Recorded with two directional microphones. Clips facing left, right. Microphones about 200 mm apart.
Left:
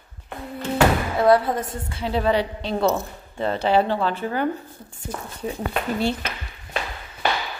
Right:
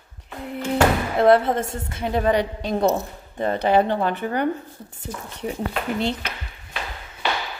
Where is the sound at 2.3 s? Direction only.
15° right (ahead or behind).